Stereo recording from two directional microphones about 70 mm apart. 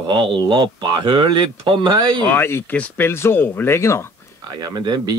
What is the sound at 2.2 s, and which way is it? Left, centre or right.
Speech, left.